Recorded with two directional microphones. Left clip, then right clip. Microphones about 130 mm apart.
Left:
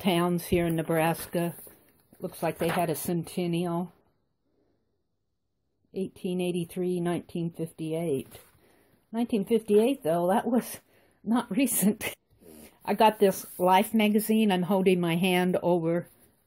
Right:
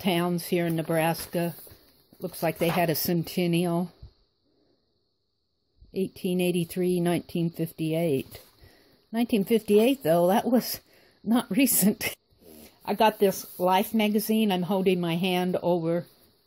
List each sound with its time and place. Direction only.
0.0 s speech: 10° right (ahead or behind)
2.2 s speech: 30° right (ahead or behind)
5.9 s speech: 40° right (ahead or behind); by 12.5 s 25° right (ahead or behind)
12.5 s speech: 15° right (ahead or behind)